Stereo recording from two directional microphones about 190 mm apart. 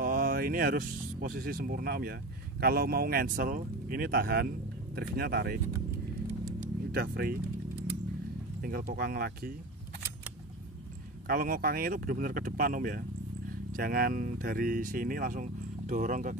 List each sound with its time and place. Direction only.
0.0 s speech: 50° right (ahead or behind)
6.4 s a sound: 55° right (ahead or behind)
8.5 s speech: 50° right (ahead or behind)
11.2 s speech: 50° right (ahead or behind)